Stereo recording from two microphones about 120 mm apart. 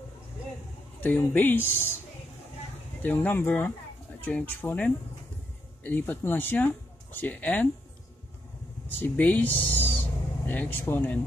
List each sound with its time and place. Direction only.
1.0 s speech: 15° left (ahead or behind)
3.0 s speech: 15° left (ahead or behind)
9.0 s speech: 15° left (ahead or behind)